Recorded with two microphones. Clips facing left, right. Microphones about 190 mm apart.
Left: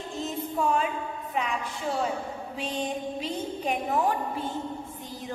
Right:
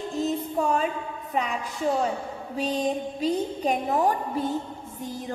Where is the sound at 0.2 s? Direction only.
40° right (ahead or behind).